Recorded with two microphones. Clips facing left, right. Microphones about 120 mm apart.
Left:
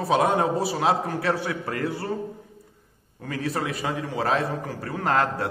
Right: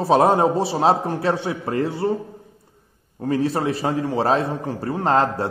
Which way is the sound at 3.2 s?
30° right (ahead or behind).